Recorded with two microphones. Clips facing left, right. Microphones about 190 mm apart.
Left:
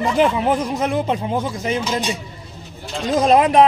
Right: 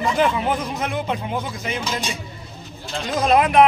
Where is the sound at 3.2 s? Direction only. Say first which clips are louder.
Left 2 dB; 35° left (ahead or behind).